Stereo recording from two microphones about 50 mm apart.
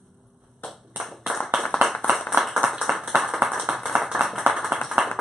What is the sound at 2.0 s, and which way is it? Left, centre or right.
Clapping, left.